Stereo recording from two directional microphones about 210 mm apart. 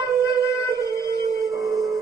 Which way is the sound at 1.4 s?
Centre (ahead or behind).